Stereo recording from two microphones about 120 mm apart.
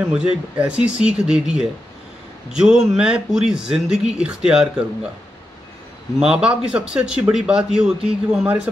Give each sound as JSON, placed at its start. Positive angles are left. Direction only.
{"t": 0.0, "sound": "a man's voice", "side_deg": -10}
{"t": 6.1, "sound": "speech", "side_deg": -5}